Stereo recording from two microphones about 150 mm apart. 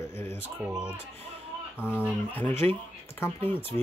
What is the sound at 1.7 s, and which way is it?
Speech, 15° left (ahead or behind).